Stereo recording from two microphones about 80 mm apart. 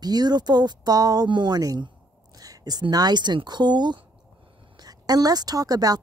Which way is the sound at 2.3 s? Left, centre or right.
Right.